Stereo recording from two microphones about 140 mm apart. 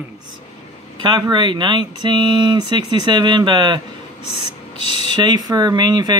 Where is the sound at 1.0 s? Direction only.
35° right (ahead or behind).